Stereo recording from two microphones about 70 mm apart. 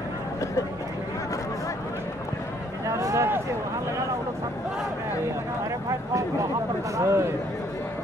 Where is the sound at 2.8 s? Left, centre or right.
Right.